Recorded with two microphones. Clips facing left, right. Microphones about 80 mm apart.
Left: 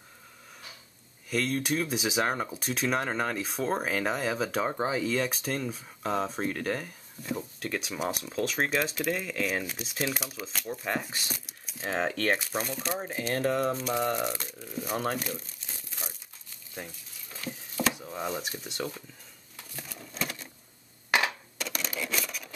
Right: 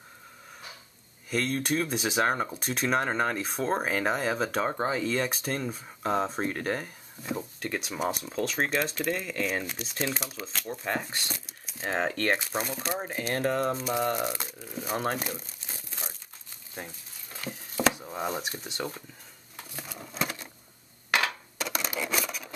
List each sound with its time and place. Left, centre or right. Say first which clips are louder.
1.3 s speech: right 1 dB; centre
3.1 s speech: right 2 dB; centre
3.3 s speech: right 1 dB; centre
8.0 s speech: right 1 dB; centre
13.6 s speech: even; centre
17.4 s a sound: right 4 dB; centre
20.1 s a sound: right 3 dB; centre
21.1 s coin: even; centre
21.5 s a sound: right 4 dB; centre